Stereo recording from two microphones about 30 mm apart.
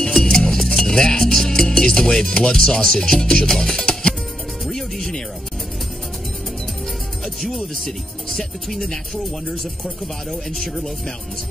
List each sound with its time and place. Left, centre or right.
0.1 s music: centre
2.3 s speech: left
4.6 s music: centre
7.4 s speech: centre